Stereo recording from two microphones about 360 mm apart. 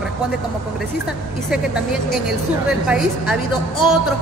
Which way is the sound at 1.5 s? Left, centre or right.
Centre.